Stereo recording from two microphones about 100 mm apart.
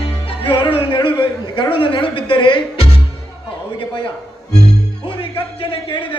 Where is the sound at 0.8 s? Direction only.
50° left (ahead or behind).